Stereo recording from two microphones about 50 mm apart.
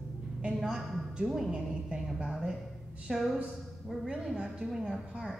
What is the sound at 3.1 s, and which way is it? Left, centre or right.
A woman's voice, centre.